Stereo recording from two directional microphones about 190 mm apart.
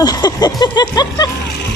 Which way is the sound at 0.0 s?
20° left (ahead or behind).